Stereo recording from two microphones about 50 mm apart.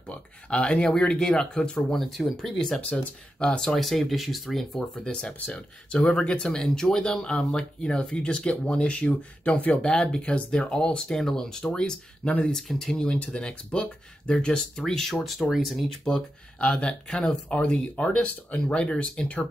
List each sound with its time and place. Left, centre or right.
0.1 s speech: left
2.0 s speech: centre
3.3 s speech: centre
3.7 s speech: centre
4.9 s speech: left
12.5 s speech: centre
13.2 s speech: left; by 15.8 s centre
16.0 s speech: centre